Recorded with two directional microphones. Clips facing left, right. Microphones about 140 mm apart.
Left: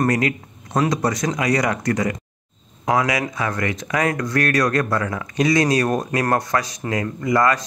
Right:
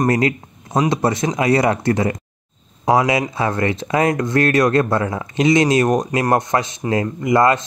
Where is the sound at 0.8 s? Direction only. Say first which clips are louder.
Right 3 dB; 25° right (ahead or behind).